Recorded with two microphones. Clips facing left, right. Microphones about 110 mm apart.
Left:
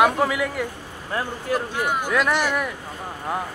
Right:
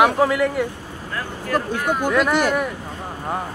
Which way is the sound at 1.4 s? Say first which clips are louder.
Right 5 dB; 50° right (ahead or behind).